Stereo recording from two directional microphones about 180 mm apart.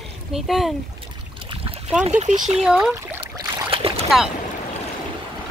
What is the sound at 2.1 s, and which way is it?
Speech, 40° right (ahead or behind).